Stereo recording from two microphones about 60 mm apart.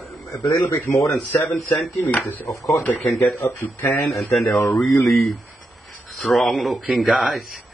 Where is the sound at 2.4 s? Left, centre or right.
Left.